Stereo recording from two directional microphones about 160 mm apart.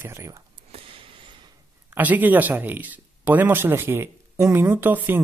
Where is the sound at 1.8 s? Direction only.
10° right (ahead or behind).